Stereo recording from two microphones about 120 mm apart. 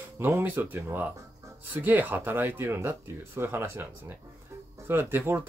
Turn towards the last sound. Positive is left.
turn(degrees=-20)  # may be behind; listen again after turning